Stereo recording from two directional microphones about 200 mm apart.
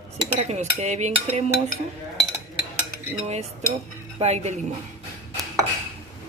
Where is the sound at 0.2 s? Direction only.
35° right (ahead or behind).